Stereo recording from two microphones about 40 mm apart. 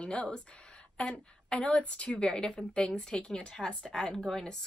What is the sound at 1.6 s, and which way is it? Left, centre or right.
Speech, left.